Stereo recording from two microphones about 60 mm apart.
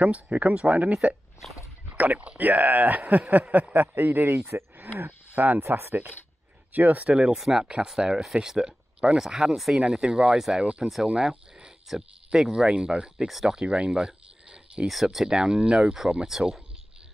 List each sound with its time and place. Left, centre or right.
0.0 s a man's voice: right
4.5 s speech: right
5.3 s speech: right
5.7 s a man's voice: right
6.7 s speech: right
7.3 s speech: centre
14.9 s speech: centre